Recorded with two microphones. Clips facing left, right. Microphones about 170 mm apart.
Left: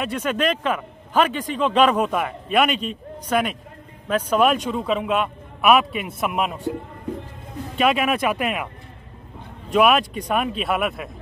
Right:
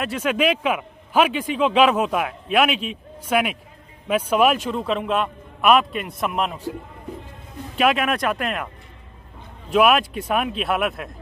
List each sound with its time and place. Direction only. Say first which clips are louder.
0.0 s a man's voice: right 1 dB; 5° right (ahead or behind)
7.7 s a man's voice: even; centre (ahead or behind)
9.7 s a man's voice: even; centre (ahead or behind)